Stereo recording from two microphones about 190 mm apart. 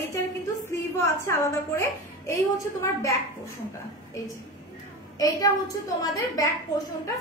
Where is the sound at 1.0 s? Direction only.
15° left (ahead or behind).